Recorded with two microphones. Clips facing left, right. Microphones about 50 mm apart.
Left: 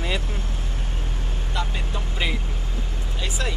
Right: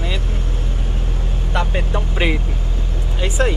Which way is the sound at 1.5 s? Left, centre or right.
Right.